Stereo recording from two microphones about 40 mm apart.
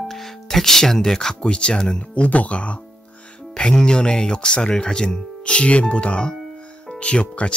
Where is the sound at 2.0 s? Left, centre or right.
Left.